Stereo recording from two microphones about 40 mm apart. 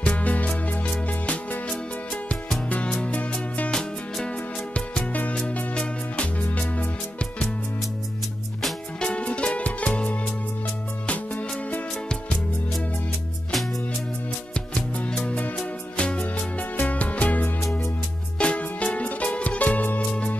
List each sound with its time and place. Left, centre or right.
0.0 s music: left
3.2 s music: left
5.3 s music: left
9.0 s music: left
14.7 s music: left
15.2 s music: left